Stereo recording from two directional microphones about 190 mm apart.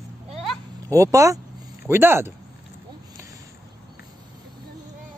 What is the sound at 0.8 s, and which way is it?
Speech, 15° right (ahead or behind).